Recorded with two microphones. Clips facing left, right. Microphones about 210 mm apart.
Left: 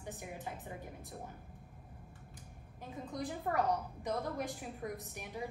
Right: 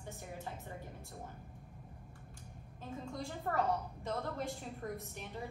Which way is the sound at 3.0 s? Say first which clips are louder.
Left 3 dB; 15° left (ahead or behind).